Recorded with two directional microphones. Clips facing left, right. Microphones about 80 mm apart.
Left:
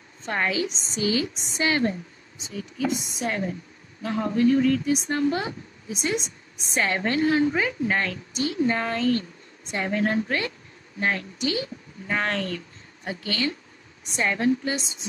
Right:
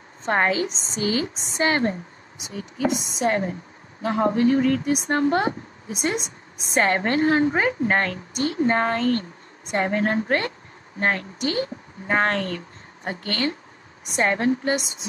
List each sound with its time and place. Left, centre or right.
0.2 s speech: right
2.9 s a woman's voice: right
4.1 s a woman's voice: right
14.3 s speech: right
14.6 s speech: right